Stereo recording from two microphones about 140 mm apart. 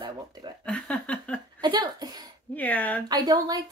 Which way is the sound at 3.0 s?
30° right (ahead or behind).